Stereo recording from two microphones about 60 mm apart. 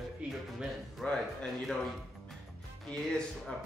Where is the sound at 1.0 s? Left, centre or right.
Centre.